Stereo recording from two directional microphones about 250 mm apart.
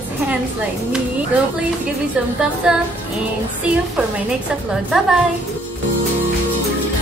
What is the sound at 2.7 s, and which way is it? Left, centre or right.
Speech, centre.